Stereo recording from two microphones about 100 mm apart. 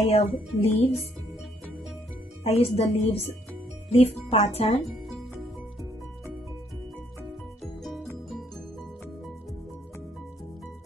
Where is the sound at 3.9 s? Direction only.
90° left.